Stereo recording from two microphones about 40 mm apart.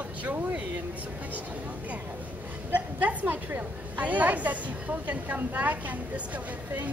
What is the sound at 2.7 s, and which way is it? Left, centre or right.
A woman's voice, right.